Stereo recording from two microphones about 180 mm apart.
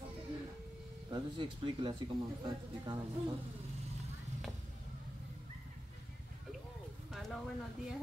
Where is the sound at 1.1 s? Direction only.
25° right (ahead or behind).